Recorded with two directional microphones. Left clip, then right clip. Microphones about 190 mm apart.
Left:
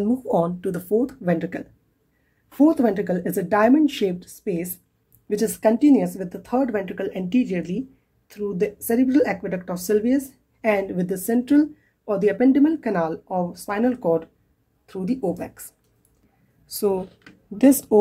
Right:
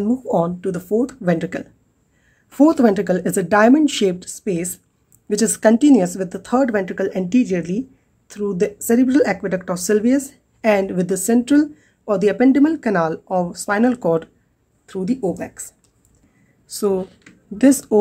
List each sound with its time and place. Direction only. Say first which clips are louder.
0.0 s speech: right 2 dB; centre (ahead or behind)
16.6 s speech: right 3 dB; 10° right (ahead or behind)